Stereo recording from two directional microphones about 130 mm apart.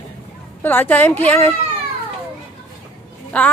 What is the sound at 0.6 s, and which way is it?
Speech, 15° left (ahead or behind).